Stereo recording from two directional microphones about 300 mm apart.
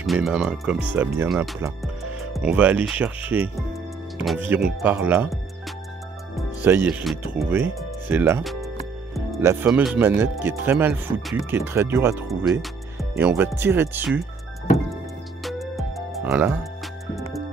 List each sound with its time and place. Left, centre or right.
0.0 s speech: centre
15.4 s music: centre